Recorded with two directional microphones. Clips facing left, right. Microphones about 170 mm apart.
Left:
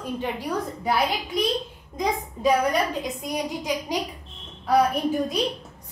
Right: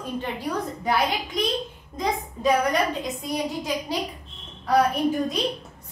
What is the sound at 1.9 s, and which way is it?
Speech, 15° left (ahead or behind).